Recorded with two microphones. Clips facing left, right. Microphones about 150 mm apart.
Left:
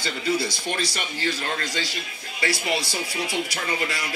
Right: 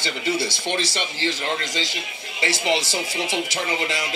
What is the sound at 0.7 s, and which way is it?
Speech, 90° right.